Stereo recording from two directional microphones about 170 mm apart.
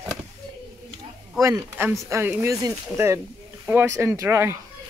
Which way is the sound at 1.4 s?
15° right (ahead or behind).